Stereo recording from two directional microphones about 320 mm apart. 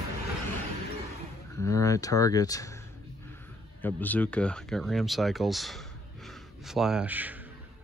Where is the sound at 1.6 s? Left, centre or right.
Centre.